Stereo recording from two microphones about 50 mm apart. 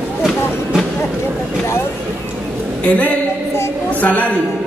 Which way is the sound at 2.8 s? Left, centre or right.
Left.